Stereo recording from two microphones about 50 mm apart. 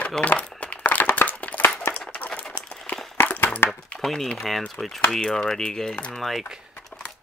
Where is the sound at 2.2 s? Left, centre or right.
Left.